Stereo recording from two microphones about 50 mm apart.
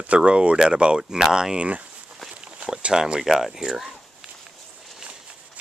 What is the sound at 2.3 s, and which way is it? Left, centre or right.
Walk, right.